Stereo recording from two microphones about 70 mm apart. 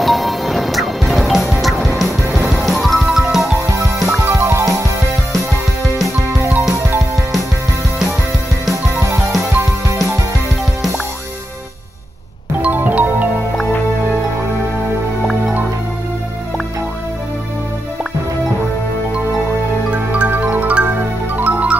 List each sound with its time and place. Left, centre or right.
0.0 s music: centre
3.5 s music: right
6.0 s music: right
12.6 s music: right
20.1 s music: right